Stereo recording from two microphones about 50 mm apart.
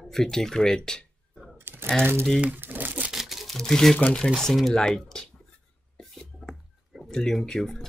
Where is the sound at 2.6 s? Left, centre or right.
Right.